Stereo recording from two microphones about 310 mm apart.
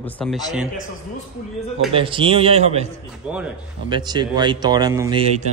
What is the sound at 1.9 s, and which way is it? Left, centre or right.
Speech, centre.